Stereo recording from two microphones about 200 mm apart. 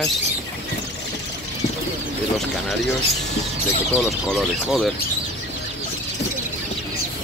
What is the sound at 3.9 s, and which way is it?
Speech, centre (ahead or behind).